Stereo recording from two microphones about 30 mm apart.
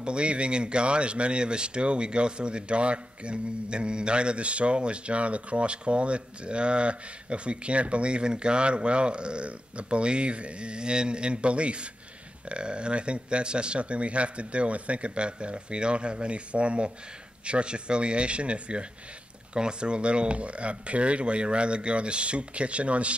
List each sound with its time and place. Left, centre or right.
0.0 s speech: right